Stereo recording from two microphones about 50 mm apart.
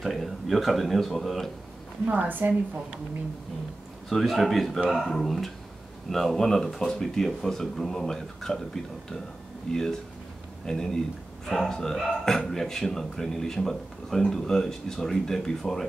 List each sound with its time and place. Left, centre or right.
0.0 s speech: centre
2.0 s a woman's voice: right
4.1 s speech: centre
9.7 s speech: centre